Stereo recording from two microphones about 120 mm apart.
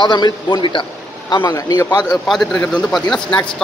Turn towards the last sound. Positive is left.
turn(degrees=10)  # may be behind; listen again after turning